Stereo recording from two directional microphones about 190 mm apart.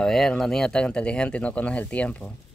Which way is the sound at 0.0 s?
Centre (ahead or behind).